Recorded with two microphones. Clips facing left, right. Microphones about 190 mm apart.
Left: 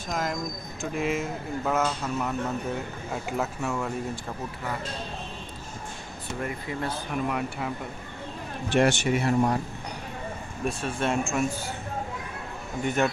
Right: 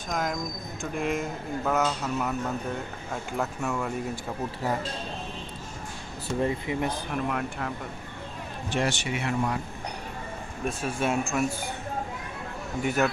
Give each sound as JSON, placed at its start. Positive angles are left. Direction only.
{"t": 0.1, "sound": "speech", "side_deg": 0}
{"t": 6.4, "sound": "speech", "side_deg": -15}
{"t": 7.1, "sound": "speech", "side_deg": 0}
{"t": 8.7, "sound": "speech", "side_deg": 50}
{"t": 10.6, "sound": "speech", "side_deg": -5}
{"t": 12.8, "sound": "speech", "side_deg": -5}